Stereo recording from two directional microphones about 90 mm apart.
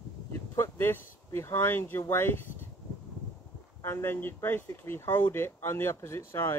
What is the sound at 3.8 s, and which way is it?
Speech, 30° left (ahead or behind).